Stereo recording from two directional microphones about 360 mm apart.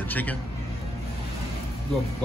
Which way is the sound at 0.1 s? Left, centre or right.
Centre.